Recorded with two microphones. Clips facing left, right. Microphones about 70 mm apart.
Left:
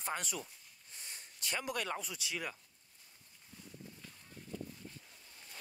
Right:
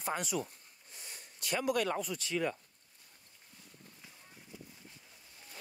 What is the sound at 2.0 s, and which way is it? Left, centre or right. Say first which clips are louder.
Speech: right 7 dB; centre.